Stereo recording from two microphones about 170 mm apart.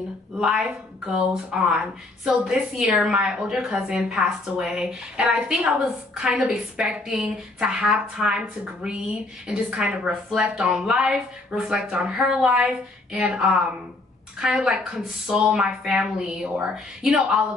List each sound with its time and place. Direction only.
0.4 s a woman's voice: centre (ahead or behind)